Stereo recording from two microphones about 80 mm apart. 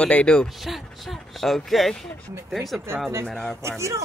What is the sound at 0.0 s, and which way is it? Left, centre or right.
Speech, centre.